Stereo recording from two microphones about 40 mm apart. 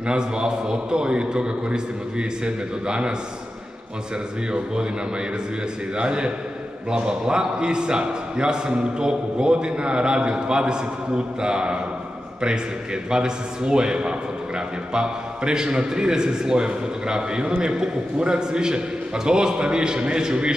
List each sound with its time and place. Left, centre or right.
0.0 s a man's voice: right
5.9 s a man's voice: right
13.1 s a man's voice: centre